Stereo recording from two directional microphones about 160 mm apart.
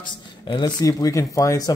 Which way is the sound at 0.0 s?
30° left (ahead or behind).